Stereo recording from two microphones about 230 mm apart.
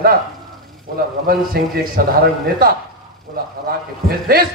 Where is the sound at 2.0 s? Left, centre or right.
Right.